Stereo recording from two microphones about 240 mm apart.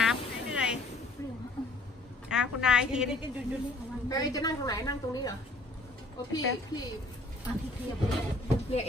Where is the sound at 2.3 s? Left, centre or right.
Centre.